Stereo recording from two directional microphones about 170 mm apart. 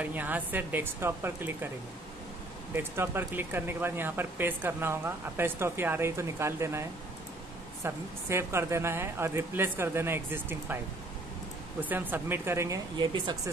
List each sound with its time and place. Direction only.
0.0 s speech: 10° right (ahead or behind)
2.7 s speech: 15° right (ahead or behind)
11.8 s speech: 10° right (ahead or behind); by 13.4 s 25° right (ahead or behind)